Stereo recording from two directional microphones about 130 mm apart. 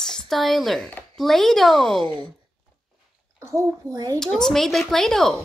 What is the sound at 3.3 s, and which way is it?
Speech, 25° right (ahead or behind).